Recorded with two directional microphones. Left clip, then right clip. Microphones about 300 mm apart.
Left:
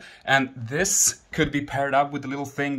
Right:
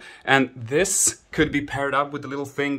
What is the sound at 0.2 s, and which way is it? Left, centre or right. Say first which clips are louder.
Speech: right 2 dB; centre.